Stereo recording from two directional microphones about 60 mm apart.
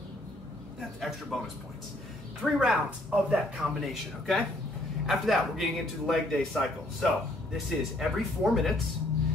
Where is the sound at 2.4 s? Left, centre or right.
Centre.